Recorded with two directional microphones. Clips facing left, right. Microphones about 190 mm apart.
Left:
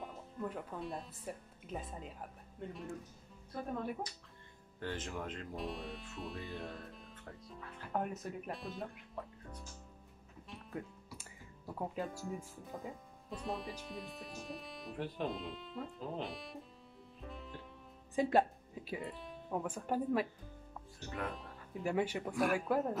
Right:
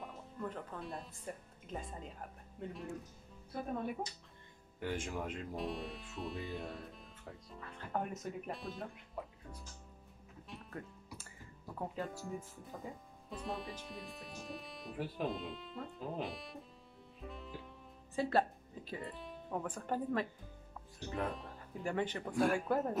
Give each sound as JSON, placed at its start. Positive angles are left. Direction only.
{"t": 0.0, "sound": "speech", "side_deg": 5}
{"t": 5.6, "sound": "speech", "side_deg": 0}
{"t": 10.7, "sound": "music", "side_deg": 10}
{"t": 12.0, "sound": "speech", "side_deg": 5}
{"t": 17.3, "sound": "music", "side_deg": 0}
{"t": 18.1, "sound": "a woman's voice", "side_deg": 15}
{"t": 18.9, "sound": "speech", "side_deg": 0}
{"t": 21.3, "sound": "speech", "side_deg": 5}